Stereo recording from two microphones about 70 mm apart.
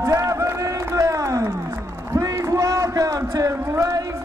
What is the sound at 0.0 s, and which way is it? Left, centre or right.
Run, right.